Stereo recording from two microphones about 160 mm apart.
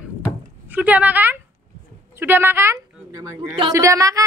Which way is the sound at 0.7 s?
10° right (ahead or behind).